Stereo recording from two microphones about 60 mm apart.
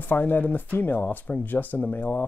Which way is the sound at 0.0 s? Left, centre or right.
Left.